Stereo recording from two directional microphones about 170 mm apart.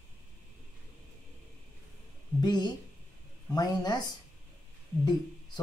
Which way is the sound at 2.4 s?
25° left (ahead or behind).